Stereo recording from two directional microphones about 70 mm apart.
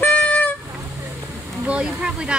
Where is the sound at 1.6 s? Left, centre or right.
Centre.